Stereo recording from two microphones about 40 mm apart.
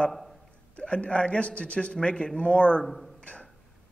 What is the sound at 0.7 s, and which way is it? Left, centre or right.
A man's voice, left.